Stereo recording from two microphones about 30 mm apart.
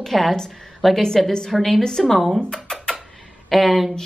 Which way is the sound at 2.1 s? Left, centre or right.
Centre.